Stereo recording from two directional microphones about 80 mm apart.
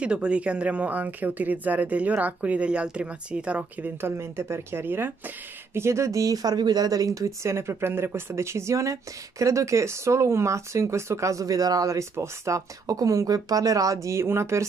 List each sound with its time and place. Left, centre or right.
0.0 s speech: centre
4.0 s speech: right
14.0 s speech: right